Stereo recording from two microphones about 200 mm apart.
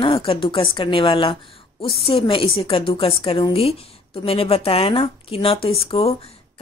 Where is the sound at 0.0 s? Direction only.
25° left (ahead or behind).